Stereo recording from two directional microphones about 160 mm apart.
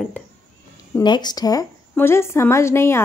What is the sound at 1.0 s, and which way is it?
A woman's voice, 25° left (ahead or behind).